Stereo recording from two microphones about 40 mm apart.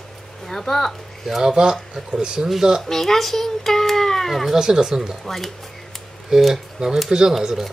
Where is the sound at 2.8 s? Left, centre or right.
Centre.